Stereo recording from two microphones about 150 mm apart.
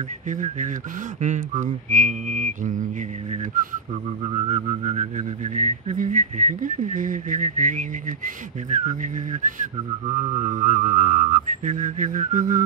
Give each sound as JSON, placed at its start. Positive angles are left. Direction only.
{"t": 0.3, "sound": "speech", "side_deg": -55}
{"t": 4.2, "sound": "speech", "side_deg": -45}
{"t": 10.0, "sound": "speech", "side_deg": -45}